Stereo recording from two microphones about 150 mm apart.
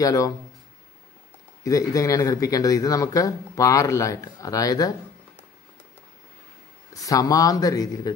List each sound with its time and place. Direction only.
0.0 s speech: 25° left (ahead or behind)
1.6 s speech: 20° left (ahead or behind)
6.9 s speech: 25° left (ahead or behind)